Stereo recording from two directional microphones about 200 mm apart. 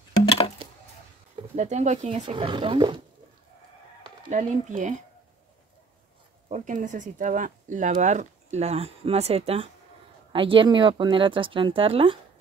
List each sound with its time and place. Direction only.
1.5 s speech: 35° right (ahead or behind)
4.3 s speech: 40° right (ahead or behind)
6.5 s speech: 40° right (ahead or behind)